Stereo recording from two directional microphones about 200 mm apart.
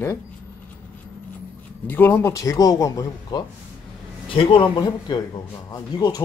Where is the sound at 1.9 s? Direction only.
10° left (ahead or behind).